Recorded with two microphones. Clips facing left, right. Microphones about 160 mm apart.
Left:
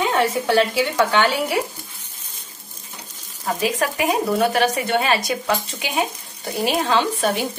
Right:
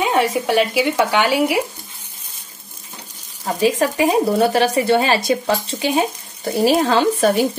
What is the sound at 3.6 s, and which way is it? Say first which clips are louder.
Speech: right 5 dB; 30° right (ahead or behind).